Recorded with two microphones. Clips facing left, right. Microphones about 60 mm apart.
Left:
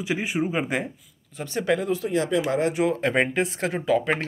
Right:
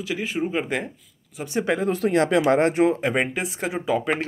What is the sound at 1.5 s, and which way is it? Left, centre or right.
Speech, right.